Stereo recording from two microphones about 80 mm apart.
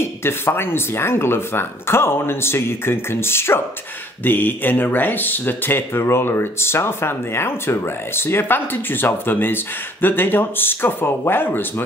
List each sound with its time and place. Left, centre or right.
0.0 s speech: left